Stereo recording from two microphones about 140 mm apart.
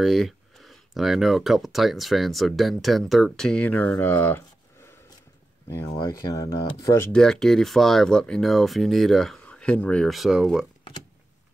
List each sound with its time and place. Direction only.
0.0 s speech: centre (ahead or behind); by 4.4 s 15° left (ahead or behind)
5.9 s speech: 25° left (ahead or behind)
7.1 s speech: 5° left (ahead or behind)